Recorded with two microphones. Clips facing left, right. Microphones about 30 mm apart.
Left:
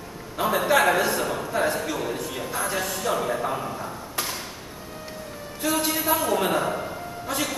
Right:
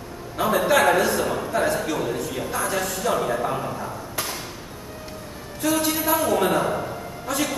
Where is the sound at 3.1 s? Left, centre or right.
Centre.